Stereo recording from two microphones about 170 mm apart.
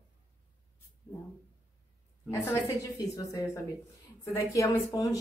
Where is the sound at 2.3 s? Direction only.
15° left (ahead or behind).